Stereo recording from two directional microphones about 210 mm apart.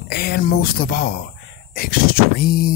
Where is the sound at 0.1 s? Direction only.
45° left (ahead or behind).